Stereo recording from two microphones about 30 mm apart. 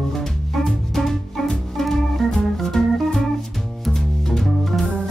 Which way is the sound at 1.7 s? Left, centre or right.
Centre.